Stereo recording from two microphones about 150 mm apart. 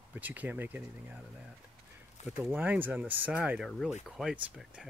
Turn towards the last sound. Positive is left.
turn(degrees=-5)  # may be behind; listen again after turning